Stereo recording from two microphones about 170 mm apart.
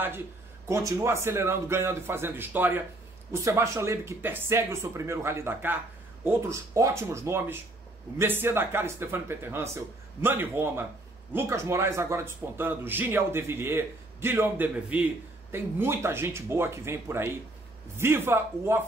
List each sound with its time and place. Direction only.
0.7 s a man's voice: 15° right (ahead or behind)